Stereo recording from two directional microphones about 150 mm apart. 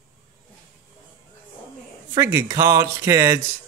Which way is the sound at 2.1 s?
15° right (ahead or behind).